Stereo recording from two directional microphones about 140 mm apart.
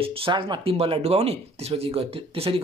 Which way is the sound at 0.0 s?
40° right (ahead or behind).